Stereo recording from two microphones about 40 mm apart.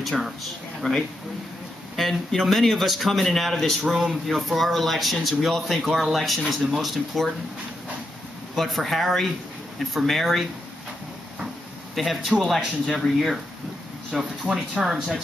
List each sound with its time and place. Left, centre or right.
0.2 s speech: centre
2.0 s speech: centre
8.5 s speech: centre
11.9 s speech: centre